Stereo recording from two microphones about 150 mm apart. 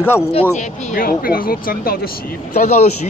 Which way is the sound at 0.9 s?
75° left (ahead or behind).